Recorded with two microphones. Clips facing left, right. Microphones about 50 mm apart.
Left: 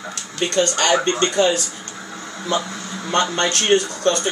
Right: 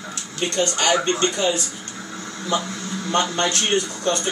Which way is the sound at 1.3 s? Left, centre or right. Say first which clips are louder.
Left 5 dB; left.